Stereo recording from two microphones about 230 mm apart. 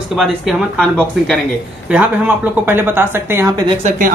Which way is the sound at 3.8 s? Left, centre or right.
Right.